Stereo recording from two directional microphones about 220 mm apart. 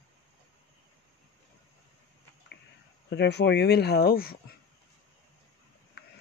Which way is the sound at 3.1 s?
50° left (ahead or behind).